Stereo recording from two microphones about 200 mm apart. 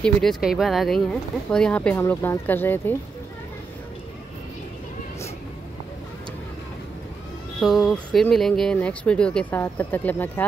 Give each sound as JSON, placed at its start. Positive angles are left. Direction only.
{"t": 0.0, "sound": "speech", "side_deg": 0}
{"t": 7.6, "sound": "speech", "side_deg": 0}